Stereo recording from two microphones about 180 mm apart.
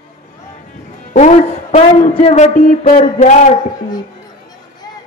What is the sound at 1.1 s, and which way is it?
A man's voice, 40° left (ahead or behind).